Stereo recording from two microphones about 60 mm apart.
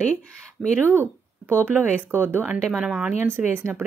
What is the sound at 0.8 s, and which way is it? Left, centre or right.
Speech, right.